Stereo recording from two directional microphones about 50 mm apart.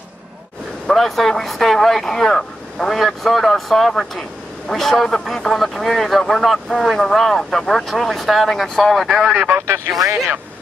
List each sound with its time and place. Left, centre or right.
0.8 s speech: centre
9.3 s speech: right
9.6 s speech: right